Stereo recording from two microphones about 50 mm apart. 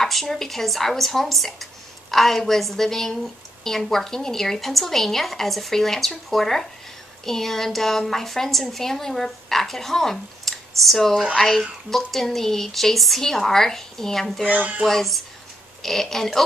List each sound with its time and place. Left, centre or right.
0.0 s a woman's voice: centre
14.5 s a sound: right
14.9 s a woman's voice: centre